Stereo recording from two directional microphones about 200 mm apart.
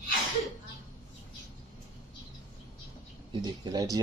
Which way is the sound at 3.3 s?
20° right (ahead or behind).